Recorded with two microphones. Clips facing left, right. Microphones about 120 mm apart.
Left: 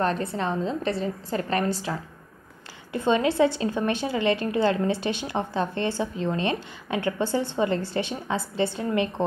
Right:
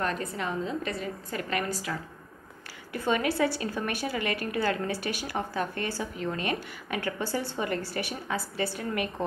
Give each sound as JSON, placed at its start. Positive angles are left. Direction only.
{"t": 0.0, "sound": "a woman's voice", "side_deg": 30}